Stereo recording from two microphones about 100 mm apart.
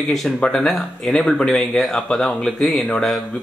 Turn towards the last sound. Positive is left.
turn(degrees=5)  # may be behind; listen again after turning